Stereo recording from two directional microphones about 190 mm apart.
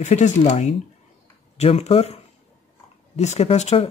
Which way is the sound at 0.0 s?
35° left (ahead or behind).